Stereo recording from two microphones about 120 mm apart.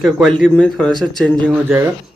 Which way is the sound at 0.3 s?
5° left (ahead or behind).